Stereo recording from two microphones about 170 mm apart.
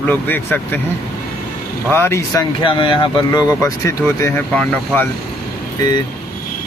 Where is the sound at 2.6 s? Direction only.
30° left (ahead or behind); by 5.1 s 10° left (ahead or behind).